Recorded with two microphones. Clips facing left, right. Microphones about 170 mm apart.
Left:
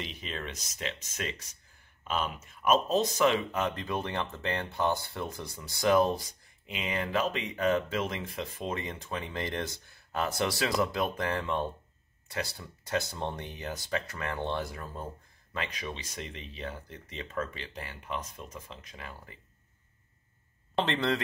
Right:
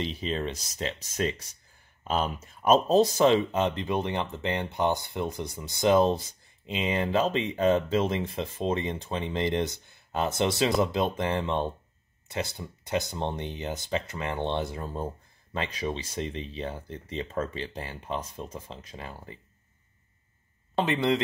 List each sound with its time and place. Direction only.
0.0 s speech: 30° right (ahead or behind)
20.8 s speech: 10° right (ahead or behind)